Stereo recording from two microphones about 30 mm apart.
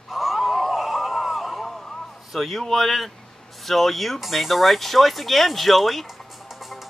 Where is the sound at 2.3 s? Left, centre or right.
Centre.